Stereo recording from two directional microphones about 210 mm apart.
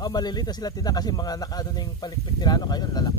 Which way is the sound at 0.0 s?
20° left (ahead or behind).